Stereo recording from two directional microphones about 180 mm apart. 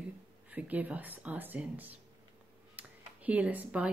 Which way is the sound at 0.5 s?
10° right (ahead or behind).